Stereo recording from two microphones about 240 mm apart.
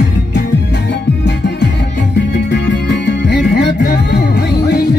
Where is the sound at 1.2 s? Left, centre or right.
Left.